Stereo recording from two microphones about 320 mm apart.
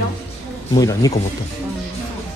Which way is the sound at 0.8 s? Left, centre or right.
Centre.